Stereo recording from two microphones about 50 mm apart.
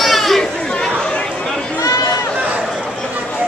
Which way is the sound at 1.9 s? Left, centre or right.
Left.